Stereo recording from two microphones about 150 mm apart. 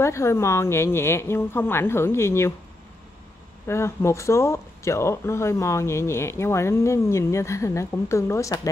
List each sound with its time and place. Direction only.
0.0 s a woman's voice: 20° left (ahead or behind)
3.6 s speech: 15° left (ahead or behind)